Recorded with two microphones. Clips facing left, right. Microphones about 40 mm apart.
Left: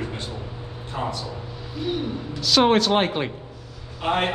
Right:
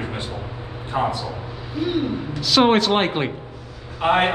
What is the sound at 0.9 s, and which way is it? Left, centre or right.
Speech, right.